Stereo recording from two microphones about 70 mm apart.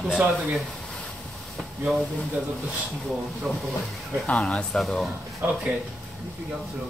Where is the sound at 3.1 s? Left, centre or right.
Centre.